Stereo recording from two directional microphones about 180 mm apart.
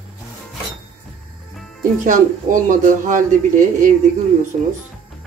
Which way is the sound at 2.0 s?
45° right (ahead or behind).